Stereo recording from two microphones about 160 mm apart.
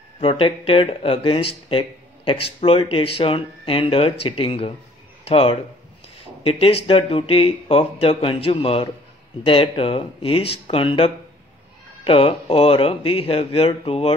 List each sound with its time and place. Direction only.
0.2 s speech: 35° left (ahead or behind)